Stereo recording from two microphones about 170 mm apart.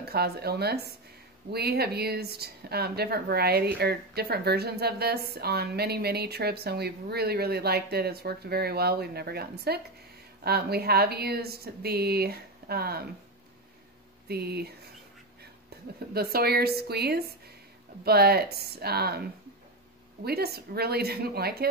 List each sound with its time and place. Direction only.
0.0 s speech: 70° right (ahead or behind)
14.2 s speech: 65° right (ahead or behind)
15.7 s a sound: 70° right (ahead or behind)
16.1 s speech: 65° right (ahead or behind)
20.2 s speech: 70° right (ahead or behind)